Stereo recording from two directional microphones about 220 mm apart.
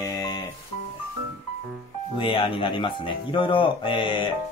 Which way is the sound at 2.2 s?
25° left (ahead or behind).